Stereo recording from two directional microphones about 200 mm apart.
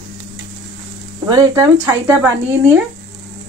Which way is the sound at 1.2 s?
20° right (ahead or behind).